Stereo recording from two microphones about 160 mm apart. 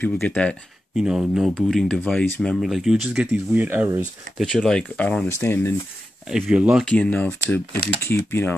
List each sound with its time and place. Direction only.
0.0 s speech: 10° left (ahead or behind)
0.9 s speech: 5° right (ahead or behind)
4.4 s speech: 5° left (ahead or behind)
6.2 s speech: 5° right (ahead or behind)
6.8 s speech: 5° left (ahead or behind)